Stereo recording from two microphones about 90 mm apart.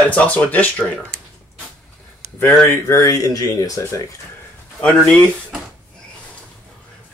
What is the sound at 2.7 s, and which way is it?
Speech, 35° left (ahead or behind).